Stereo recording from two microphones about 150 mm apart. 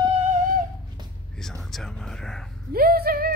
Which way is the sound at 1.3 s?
5° left (ahead or behind).